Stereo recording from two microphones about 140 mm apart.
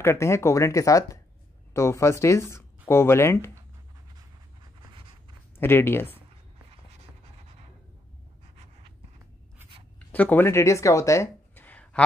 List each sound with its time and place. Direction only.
0.0 s speech: 20° left (ahead or behind)
5.6 s speech: 15° left (ahead or behind)
9.9 s a sound: 10° left (ahead or behind)